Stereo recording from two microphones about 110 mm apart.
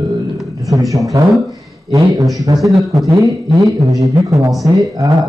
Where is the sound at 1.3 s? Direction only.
Centre (ahead or behind).